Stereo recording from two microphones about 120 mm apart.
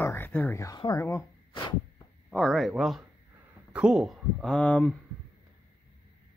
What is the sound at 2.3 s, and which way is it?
A man's voice, centre (ahead or behind).